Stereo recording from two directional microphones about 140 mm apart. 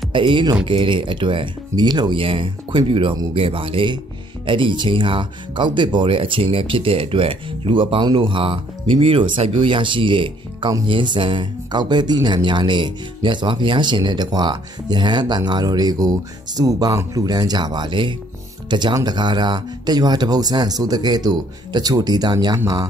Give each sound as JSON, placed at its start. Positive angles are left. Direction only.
{"t": 0.1, "sound": "speech", "side_deg": -35}